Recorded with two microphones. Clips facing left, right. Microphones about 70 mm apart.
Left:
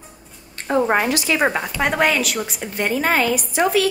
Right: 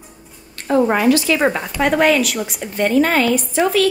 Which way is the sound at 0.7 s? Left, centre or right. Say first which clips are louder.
Right 4 dB; left.